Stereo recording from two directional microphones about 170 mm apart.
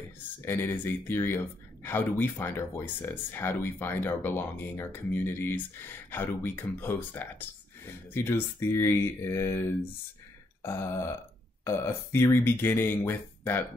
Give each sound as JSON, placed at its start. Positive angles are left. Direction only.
{"t": 0.5, "sound": "speech", "side_deg": 15}